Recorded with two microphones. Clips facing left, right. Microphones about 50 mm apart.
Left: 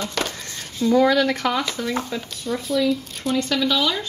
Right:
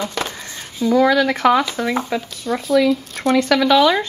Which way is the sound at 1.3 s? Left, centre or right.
Right.